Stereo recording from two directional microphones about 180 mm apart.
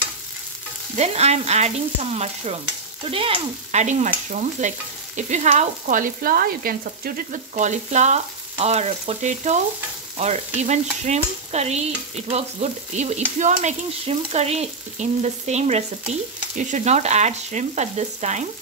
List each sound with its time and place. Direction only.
0.9 s stir: 35° right (ahead or behind)
3.8 s stir: 45° right (ahead or behind)